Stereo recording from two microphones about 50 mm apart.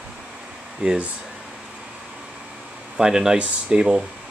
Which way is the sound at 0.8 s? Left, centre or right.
Right.